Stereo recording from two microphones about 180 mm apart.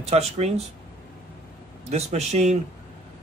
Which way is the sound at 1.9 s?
35° right (ahead or behind).